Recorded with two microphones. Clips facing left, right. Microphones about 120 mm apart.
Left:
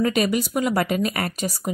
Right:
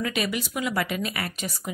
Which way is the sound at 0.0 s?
40° left (ahead or behind).